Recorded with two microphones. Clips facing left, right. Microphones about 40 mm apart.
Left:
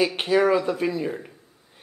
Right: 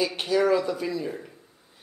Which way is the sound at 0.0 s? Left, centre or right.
Left.